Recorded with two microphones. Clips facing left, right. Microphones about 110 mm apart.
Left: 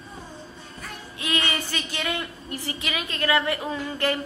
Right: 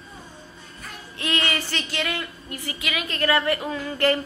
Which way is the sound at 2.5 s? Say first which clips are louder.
Even; 30° left (ahead or behind).